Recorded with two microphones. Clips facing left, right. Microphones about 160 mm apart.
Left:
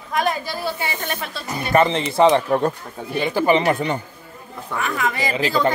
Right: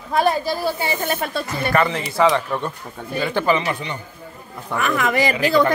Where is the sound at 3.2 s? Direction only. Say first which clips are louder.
Left 1 dB; 15° left (ahead or behind).